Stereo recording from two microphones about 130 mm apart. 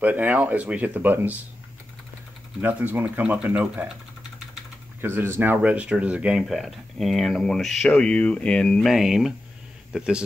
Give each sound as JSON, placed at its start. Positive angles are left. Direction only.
{"t": 0.0, "sound": "speech", "side_deg": -15}
{"t": 2.6, "sound": "speech", "side_deg": -15}
{"t": 5.0, "sound": "speech", "side_deg": -15}